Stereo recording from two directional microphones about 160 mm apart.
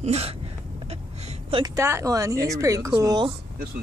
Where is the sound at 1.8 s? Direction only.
15° right (ahead or behind).